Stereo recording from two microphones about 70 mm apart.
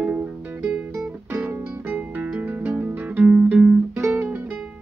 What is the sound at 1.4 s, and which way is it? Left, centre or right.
Music, right.